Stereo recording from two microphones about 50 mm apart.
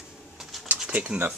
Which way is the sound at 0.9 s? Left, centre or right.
Right.